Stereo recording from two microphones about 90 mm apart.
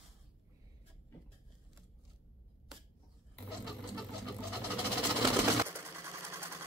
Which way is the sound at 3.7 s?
Centre (ahead or behind).